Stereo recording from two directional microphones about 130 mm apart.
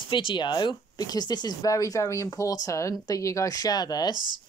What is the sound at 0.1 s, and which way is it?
Speech, 40° left (ahead or behind).